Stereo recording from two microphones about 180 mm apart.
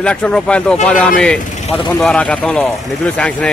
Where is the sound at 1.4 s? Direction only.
45° left (ahead or behind).